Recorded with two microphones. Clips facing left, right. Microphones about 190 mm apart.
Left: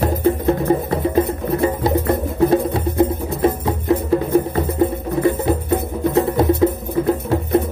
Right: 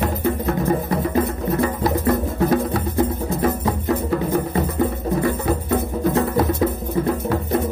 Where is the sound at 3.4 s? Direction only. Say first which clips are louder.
Left 3 dB; 25° left (ahead or behind).